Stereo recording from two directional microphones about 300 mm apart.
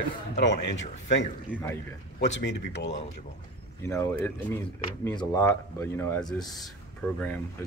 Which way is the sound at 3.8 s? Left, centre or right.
Centre.